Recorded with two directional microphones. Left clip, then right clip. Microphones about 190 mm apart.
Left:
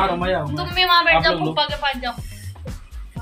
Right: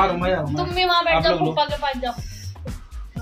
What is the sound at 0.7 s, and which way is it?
Speech, 55° right (ahead or behind).